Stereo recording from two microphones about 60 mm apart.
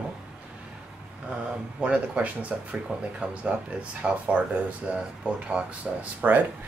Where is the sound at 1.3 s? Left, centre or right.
Centre.